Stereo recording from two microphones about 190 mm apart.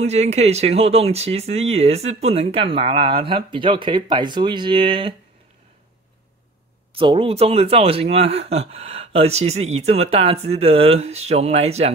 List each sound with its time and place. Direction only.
0.0 s speech: 35° right (ahead or behind)
6.9 s speech: 30° right (ahead or behind)